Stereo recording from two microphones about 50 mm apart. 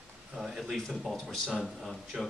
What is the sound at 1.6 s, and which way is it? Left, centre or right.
Speech, centre.